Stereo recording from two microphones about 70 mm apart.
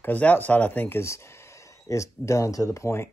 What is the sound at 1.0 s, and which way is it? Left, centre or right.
Speech, left.